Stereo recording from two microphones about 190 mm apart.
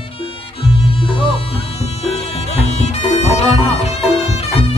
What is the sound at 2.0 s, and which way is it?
Music, 35° left (ahead or behind).